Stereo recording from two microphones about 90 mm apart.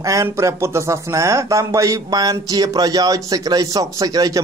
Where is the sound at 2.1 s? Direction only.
50° right (ahead or behind).